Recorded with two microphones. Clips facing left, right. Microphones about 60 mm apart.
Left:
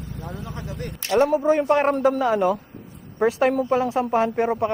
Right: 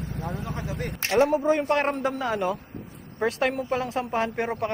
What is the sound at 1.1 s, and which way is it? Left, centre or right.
Speech, right.